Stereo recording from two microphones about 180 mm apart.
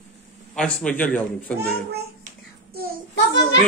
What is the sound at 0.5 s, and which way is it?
Speech, 5° left (ahead or behind).